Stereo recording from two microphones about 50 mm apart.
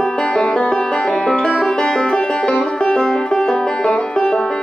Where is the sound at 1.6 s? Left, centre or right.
Centre.